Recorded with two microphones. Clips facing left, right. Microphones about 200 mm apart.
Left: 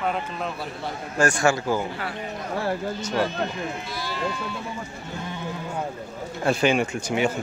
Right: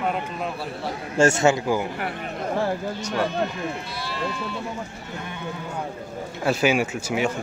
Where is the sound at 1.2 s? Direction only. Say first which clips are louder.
Right 3 dB; 25° right (ahead or behind).